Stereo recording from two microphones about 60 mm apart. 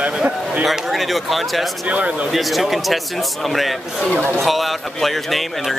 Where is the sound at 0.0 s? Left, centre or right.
Centre.